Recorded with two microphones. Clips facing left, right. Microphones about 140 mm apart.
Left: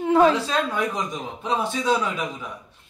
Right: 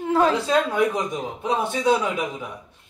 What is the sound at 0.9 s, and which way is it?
Speech, 20° right (ahead or behind).